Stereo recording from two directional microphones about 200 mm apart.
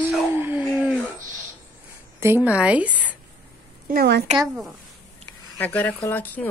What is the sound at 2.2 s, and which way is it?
A woman's voice, 10° right (ahead or behind).